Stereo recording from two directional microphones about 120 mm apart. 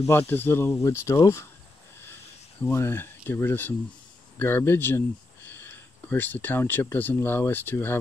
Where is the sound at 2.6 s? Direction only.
20° left (ahead or behind).